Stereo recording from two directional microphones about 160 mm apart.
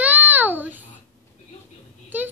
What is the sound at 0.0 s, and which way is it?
Babbling, 10° right (ahead or behind).